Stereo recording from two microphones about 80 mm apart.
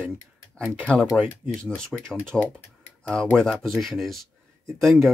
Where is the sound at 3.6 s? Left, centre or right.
Centre.